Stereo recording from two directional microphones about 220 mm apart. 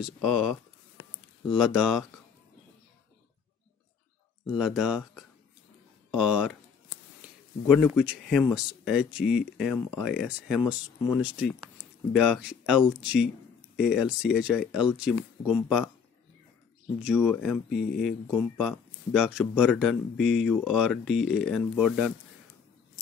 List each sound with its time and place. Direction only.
0.0 s speech: centre (ahead or behind)
1.5 s speech: centre (ahead or behind)
4.5 s speech: centre (ahead or behind)
6.1 s a sound: 5° right (ahead or behind)
8.5 s speech: 5° right (ahead or behind)
17.2 s speech: 5° left (ahead or behind)